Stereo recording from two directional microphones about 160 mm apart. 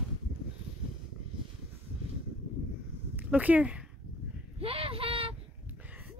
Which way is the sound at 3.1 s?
10° right (ahead or behind).